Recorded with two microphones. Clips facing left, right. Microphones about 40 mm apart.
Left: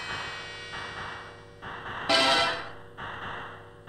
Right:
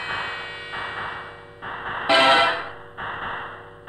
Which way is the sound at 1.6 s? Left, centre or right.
Right.